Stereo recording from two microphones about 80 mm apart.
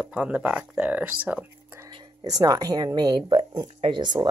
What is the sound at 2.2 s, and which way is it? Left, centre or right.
Speech, right.